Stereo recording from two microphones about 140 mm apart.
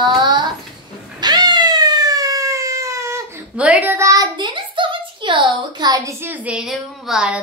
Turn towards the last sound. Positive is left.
turn(degrees=-5)  # may be behind; listen again after turning